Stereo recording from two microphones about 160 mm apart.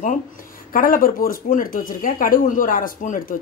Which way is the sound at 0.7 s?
60° left (ahead or behind).